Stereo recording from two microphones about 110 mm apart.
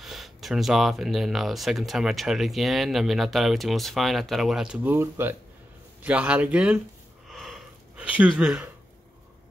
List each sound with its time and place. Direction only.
0.0 s speech: centre (ahead or behind)
4.8 s speech: 20° right (ahead or behind)
6.0 s a man's voice: 10° right (ahead or behind)
7.2 s a sound: centre (ahead or behind)